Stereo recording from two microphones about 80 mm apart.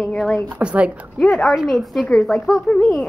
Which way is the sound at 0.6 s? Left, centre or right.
Centre.